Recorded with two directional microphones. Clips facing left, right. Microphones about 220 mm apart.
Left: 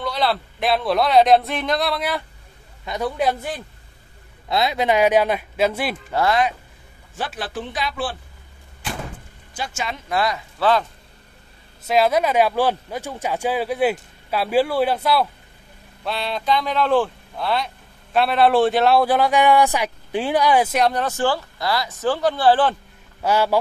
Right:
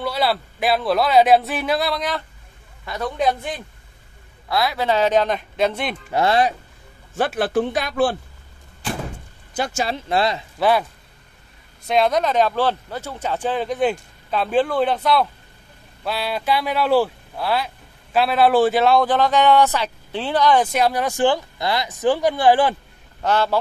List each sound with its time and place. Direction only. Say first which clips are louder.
0.0 s speech: right 1 dB; 5° right (ahead or behind)
2.8 s a woman's voice: left 2 dB; 20° left (ahead or behind)
3.2 s speech: right 4 dB; 10° left (ahead or behind)
4.5 s speech: left 1 dB; 20° left (ahead or behind); by 5.9 s 5° left (ahead or behind)
6.1 s speech: right 2 dB; 30° right (ahead or behind)
7.2 s speech: right 9 dB; 55° right (ahead or behind)
9.6 s speech: right 5 dB; 35° right (ahead or behind)
10.6 s speech: right 1 dB; 10° right (ahead or behind)
11.9 s speech: left 1 dB; 5° left (ahead or behind)
20.8 s speech: right 2 dB; 10° right (ahead or behind)
23.2 s speech: left 1 dB; 10° left (ahead or behind)